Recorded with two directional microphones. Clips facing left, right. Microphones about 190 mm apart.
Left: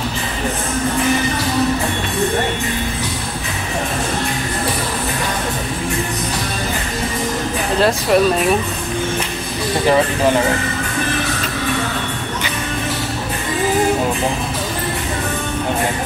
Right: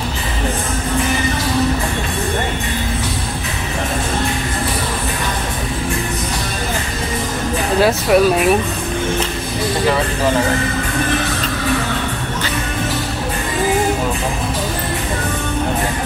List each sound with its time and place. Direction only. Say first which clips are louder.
7.8 s speech: right 1 dB; 5° right (ahead or behind)